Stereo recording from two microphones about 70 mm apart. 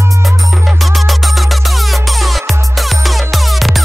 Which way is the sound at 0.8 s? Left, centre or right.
Centre.